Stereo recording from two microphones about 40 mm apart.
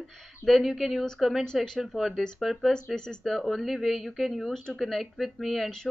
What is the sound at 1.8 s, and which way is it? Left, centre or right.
Speech, centre.